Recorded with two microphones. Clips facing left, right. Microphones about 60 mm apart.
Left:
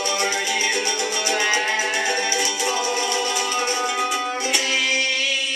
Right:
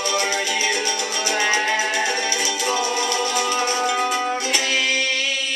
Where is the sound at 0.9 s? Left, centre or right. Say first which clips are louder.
Left 1 dB; centre.